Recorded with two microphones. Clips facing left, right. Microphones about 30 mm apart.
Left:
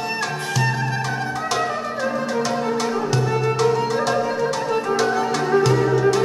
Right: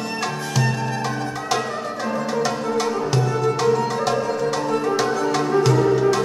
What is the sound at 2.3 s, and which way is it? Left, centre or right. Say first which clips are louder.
Music: even; centre.